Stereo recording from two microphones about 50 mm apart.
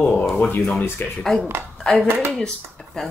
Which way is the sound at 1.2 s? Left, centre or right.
Centre.